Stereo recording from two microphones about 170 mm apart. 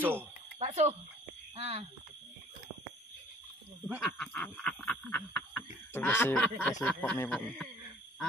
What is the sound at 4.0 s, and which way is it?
Speech, 5° left (ahead or behind).